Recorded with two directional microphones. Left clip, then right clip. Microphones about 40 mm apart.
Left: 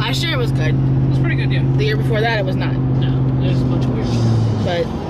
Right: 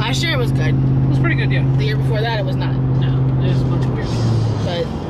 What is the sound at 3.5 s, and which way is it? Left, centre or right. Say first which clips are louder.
Speech: left 2 dB; right.